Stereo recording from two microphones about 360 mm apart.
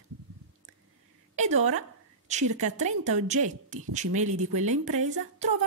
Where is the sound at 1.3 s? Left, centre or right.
Centre.